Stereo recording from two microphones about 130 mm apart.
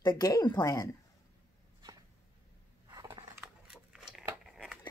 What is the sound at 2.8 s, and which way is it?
Scissors, 25° right (ahead or behind).